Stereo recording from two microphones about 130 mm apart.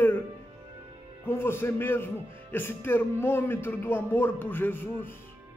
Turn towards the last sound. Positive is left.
turn(degrees=15)  # may be behind; listen again after turning